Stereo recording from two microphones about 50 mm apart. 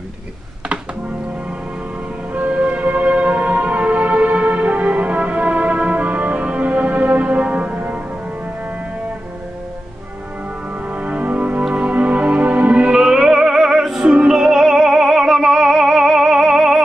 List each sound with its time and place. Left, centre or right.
2.3 s music: right
10.9 s music: right
12.9 s music: centre